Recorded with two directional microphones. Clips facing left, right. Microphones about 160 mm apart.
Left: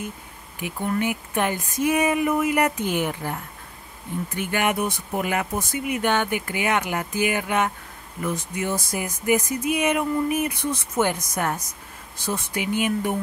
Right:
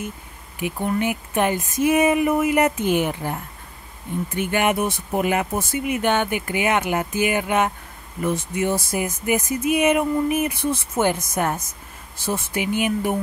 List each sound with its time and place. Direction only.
0.6 s speech: 15° right (ahead or behind)
4.4 s speech: 20° right (ahead or behind)